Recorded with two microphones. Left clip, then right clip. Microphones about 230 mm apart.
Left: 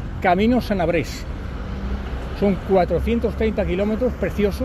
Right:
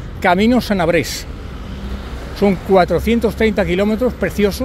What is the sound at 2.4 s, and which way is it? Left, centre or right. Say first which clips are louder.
Speech: right 6 dB; right.